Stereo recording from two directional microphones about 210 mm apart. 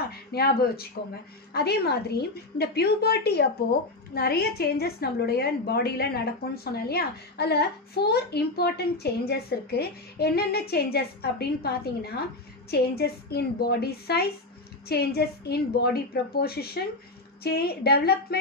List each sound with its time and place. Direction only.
0.1 s a woman's voice: 50° left (ahead or behind)